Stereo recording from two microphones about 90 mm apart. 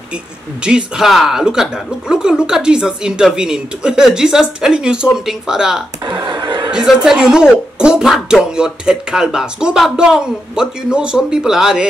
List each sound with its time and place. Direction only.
0.7 s speech: 5° right (ahead or behind)
6.0 s a sound: 55° right (ahead or behind)
6.7 s a woman's voice: 5° right (ahead or behind)